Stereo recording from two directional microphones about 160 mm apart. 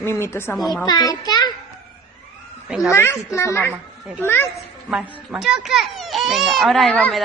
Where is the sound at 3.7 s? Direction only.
10° right (ahead or behind).